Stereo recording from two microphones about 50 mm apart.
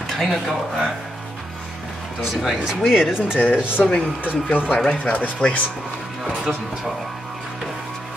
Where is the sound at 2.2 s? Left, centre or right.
Centre.